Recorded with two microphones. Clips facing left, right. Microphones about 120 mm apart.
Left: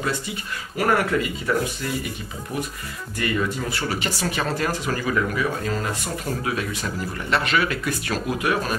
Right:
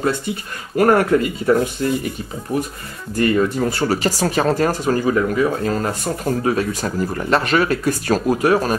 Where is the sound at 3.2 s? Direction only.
40° right (ahead or behind).